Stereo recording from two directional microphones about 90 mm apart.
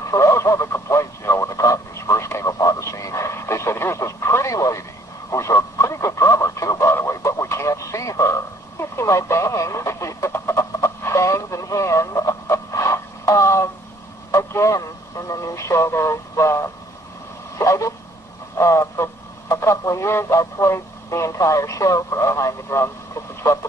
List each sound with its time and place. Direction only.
0.1 s radio: 35° left (ahead or behind)
14.3 s a man's voice: 35° left (ahead or behind)
17.6 s a sound: 35° left (ahead or behind)
18.6 s radio: 35° left (ahead or behind)
19.5 s speech: 30° left (ahead or behind)